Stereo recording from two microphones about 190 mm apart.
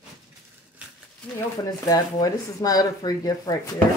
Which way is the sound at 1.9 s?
20° left (ahead or behind).